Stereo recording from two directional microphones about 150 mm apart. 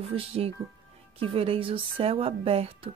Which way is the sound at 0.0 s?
40° right (ahead or behind).